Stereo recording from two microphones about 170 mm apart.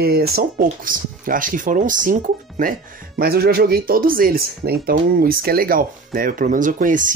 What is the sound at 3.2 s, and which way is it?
Speech, 65° right (ahead or behind).